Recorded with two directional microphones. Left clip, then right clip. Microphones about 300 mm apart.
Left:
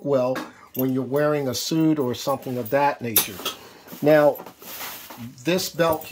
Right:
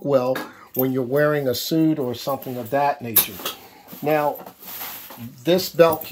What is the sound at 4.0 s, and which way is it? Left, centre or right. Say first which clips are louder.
Speech: left 4 dB; left.